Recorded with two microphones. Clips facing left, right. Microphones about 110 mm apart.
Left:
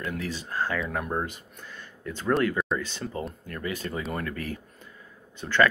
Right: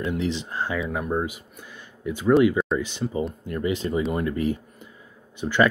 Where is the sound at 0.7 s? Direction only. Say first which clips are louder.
Right 3 dB; 5° right (ahead or behind).